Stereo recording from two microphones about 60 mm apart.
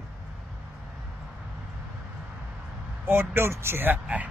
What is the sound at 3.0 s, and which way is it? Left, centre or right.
Speech, right.